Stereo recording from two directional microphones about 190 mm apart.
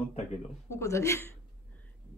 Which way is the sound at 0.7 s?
15° left (ahead or behind).